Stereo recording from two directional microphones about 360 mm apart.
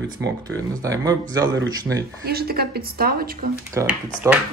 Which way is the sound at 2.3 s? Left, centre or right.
Right.